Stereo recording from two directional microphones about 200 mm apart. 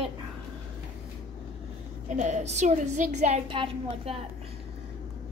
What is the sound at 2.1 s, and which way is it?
A woman's voice, 35° right (ahead or behind).